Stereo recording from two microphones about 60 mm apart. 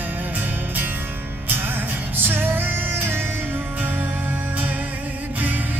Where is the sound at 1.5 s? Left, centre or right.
Right.